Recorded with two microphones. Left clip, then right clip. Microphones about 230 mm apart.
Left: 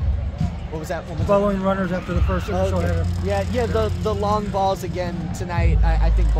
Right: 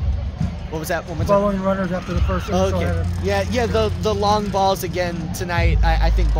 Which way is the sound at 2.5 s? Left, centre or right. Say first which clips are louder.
Right 3 dB; right.